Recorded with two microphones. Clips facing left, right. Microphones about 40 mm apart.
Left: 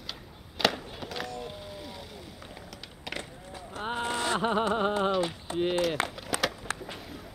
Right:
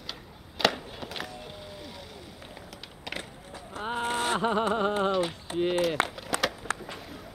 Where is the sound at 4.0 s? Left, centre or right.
Right.